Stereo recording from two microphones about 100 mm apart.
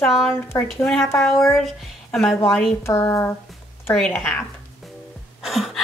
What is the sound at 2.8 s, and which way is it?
Speech, 30° left (ahead or behind).